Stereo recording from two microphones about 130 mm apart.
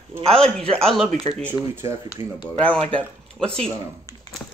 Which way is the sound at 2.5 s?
10° left (ahead or behind).